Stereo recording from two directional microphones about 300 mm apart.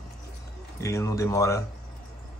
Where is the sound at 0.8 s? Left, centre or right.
Centre.